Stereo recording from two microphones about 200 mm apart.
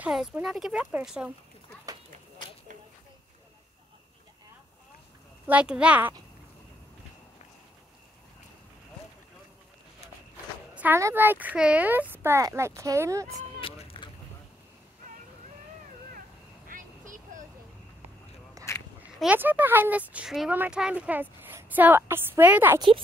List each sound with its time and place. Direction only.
0.0 s speech: 5° right (ahead or behind)
5.5 s speech: 5° right (ahead or behind)
10.7 s speech: 10° right (ahead or behind)
13.6 s boat: 30° left (ahead or behind)
16.6 s vehicle: 40° right (ahead or behind)
19.1 s speech: 5° right (ahead or behind)
22.8 s speech: 25° right (ahead or behind)